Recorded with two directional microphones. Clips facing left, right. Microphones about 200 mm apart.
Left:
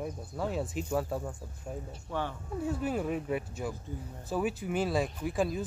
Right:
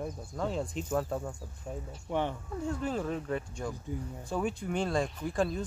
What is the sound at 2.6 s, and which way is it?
Speech, 5° left (ahead or behind).